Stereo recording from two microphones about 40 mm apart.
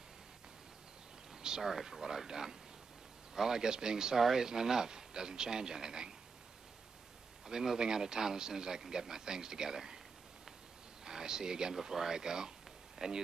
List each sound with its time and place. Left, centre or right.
1.4 s a man's voice: centre
7.4 s a man's voice: centre
11.1 s a man's voice: centre